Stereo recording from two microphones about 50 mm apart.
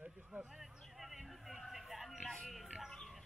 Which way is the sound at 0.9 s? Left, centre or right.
Centre.